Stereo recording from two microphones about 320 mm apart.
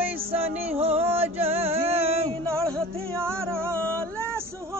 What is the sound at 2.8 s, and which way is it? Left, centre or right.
Music, centre.